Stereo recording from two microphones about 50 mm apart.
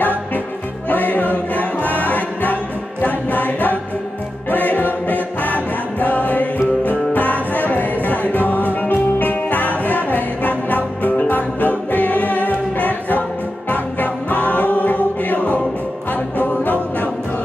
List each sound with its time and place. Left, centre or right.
0.8 s music: left